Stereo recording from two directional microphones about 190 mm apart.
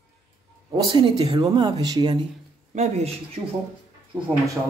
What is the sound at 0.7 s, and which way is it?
Speech, 25° right (ahead or behind).